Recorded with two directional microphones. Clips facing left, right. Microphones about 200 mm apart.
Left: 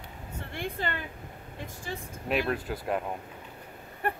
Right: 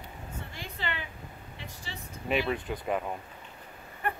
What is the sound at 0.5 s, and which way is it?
Speech, 50° left (ahead or behind).